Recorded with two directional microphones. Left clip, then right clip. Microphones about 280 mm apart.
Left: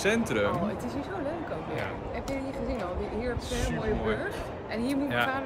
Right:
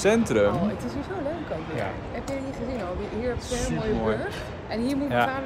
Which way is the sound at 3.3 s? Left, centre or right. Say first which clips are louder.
Right 3 dB; centre.